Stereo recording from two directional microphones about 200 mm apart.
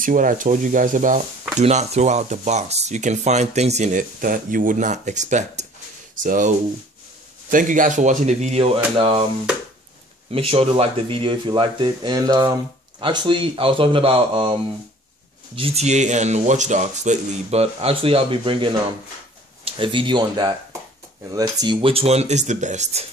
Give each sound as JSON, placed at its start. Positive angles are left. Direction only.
{"t": 0.0, "sound": "speech", "side_deg": -40}
{"t": 10.3, "sound": "speech", "side_deg": -30}